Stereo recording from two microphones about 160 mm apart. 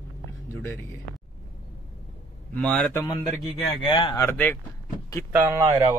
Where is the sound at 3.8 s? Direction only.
30° left (ahead or behind).